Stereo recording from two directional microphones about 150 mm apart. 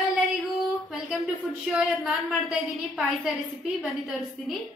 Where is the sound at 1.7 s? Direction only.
5° right (ahead or behind).